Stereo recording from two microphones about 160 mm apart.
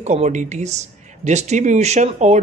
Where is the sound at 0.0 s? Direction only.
45° right (ahead or behind).